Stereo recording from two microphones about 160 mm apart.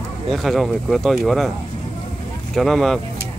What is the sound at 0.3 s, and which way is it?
Speech, centre (ahead or behind).